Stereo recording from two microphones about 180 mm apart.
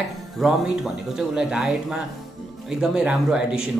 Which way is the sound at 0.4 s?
Centre (ahead or behind).